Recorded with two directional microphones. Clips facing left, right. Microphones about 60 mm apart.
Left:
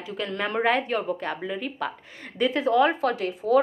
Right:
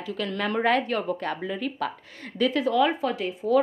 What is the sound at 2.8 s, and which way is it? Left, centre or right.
Speech, left.